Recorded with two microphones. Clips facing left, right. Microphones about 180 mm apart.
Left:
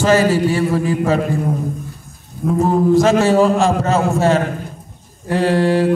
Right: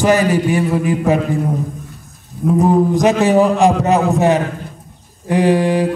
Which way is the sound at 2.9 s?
15° right (ahead or behind).